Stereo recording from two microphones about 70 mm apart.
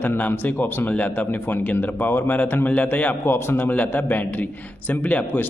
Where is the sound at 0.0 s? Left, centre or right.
Left.